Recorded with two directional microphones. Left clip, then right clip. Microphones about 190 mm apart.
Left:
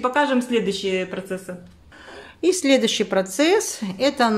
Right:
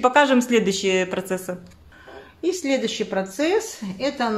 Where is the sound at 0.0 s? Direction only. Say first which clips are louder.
Right 3 dB; 35° right (ahead or behind).